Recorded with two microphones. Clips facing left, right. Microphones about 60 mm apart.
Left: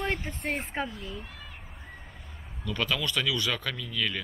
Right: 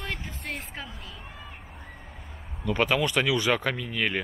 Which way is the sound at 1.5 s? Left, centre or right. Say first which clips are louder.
Right 2 dB; centre.